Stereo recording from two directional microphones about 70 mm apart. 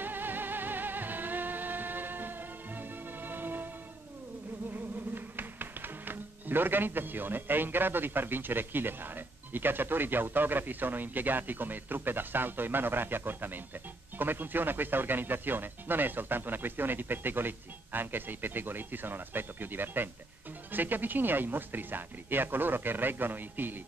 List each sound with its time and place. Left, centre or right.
0.0 s music: right
4.7 s speech: right